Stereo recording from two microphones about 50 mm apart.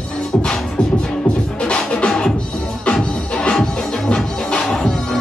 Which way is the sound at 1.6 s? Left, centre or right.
Left.